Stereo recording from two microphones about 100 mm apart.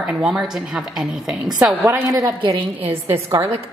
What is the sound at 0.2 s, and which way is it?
A woman's voice, 5° right (ahead or behind).